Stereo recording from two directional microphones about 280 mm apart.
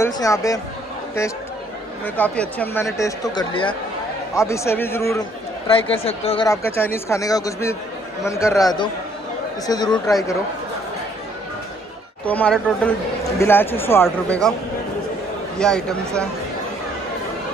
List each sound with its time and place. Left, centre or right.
0.0 s speech: centre
2.0 s speech: centre
6.0 s speech: centre
12.3 s speech: centre
15.5 s speech: centre